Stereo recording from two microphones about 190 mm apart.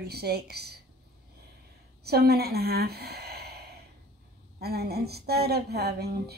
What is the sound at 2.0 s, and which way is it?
Speech, 55° right (ahead or behind).